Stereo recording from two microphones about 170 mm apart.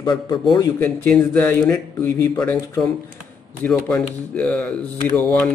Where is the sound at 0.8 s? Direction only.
10° left (ahead or behind).